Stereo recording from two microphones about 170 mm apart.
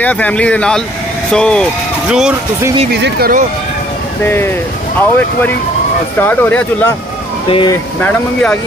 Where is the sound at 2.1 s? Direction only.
5° right (ahead or behind).